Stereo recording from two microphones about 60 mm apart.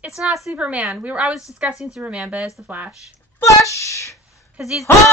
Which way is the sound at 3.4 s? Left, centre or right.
Left.